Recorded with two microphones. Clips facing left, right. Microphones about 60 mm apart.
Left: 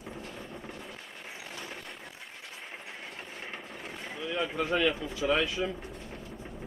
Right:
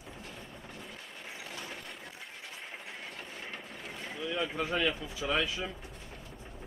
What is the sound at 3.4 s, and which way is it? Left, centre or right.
Train, centre.